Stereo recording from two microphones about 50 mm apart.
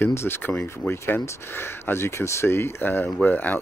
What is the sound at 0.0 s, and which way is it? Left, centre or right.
Speech, left.